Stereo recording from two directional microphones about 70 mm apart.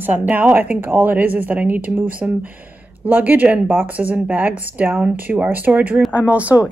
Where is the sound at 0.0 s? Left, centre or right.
Right.